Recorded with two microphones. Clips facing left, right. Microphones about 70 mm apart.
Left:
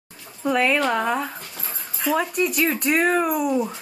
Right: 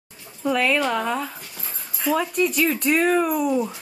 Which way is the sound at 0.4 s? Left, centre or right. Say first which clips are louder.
Left 1 dB; centre.